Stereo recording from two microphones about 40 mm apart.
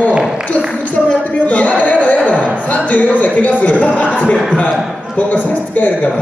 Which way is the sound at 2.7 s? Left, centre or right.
Left.